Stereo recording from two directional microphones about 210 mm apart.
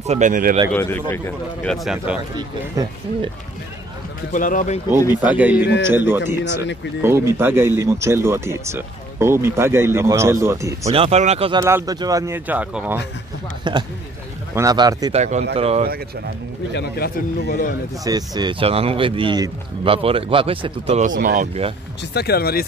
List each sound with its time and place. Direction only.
0.0 s speech: 35° right (ahead or behind)
0.7 s speech: 10° left (ahead or behind)
2.3 s speech: 20° right (ahead or behind)
4.3 s speech: 40° left (ahead or behind)
5.2 s speech: 5° right (ahead or behind)
10.9 s speech: 30° right (ahead or behind)
11.6 s speech: 15° right (ahead or behind)
13.7 s speech: 20° right (ahead or behind)
15.1 s speech: 35° right (ahead or behind)
16.7 s speech: 45° left (ahead or behind)
18.0 s speech: 20° right (ahead or behind)
22.1 s speech: 50° left (ahead or behind)